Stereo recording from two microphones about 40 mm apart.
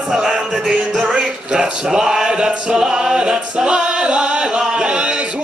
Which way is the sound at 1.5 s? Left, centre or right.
Centre.